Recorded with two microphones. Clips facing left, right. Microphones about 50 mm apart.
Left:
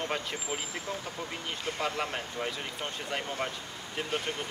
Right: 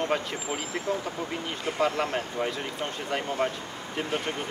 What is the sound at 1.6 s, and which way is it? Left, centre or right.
Speech, centre.